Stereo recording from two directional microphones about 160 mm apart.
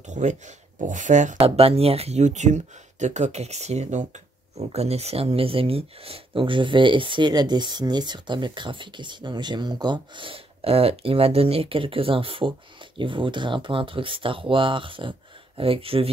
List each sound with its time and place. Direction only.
0.0 s speech: 50° right (ahead or behind)
1.4 s speech: 35° right (ahead or behind)